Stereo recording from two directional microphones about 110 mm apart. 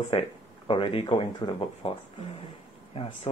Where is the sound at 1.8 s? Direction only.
60° left (ahead or behind).